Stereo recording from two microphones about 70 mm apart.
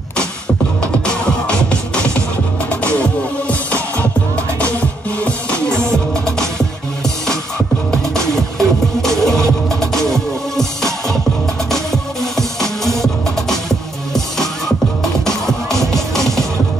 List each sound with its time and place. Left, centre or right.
1.0 s music: centre
5.2 s music: centre
7.9 s music: centre